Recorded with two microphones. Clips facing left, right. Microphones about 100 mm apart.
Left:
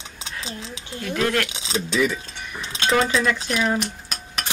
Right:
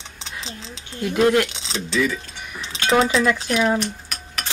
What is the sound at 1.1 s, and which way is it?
Speech, 20° right (ahead or behind).